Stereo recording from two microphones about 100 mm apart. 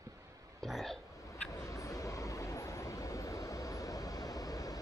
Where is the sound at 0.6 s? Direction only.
5° left (ahead or behind).